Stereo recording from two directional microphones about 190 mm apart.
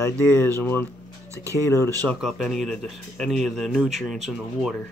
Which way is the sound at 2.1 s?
Centre (ahead or behind).